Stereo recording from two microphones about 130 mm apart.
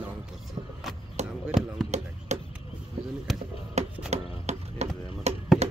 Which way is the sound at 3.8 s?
60° right (ahead or behind).